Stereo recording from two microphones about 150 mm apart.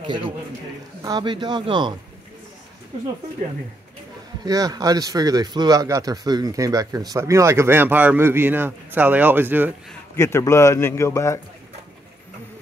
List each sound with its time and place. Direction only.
0.0 s a man's voice: 30° right (ahead or behind)
4.5 s speech: 25° right (ahead or behind)
10.1 s a man's voice: 20° left (ahead or behind)